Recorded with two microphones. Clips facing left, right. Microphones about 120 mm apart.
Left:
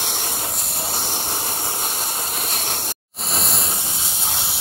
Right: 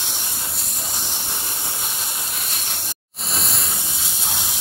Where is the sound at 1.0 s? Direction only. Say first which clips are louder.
Left 5 dB; 50° left (ahead or behind).